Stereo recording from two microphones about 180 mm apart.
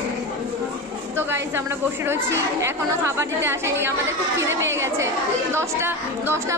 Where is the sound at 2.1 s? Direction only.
15° right (ahead or behind).